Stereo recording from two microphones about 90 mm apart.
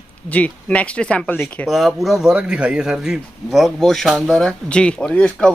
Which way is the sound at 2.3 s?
10° right (ahead or behind).